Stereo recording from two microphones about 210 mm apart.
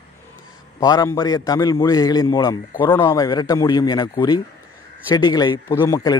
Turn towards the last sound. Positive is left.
turn(degrees=15)  # may be behind; listen again after turning